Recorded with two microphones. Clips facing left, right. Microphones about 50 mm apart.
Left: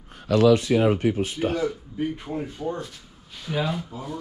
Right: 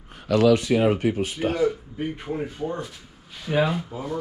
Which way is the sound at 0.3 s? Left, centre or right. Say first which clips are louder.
Even; right.